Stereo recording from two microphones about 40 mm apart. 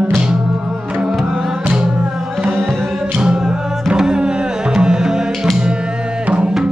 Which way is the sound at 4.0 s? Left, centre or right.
Centre.